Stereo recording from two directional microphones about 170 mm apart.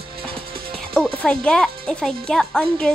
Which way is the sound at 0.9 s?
5° left (ahead or behind).